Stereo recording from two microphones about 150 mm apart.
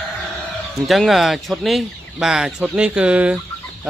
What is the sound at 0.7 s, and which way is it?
Speech, centre (ahead or behind).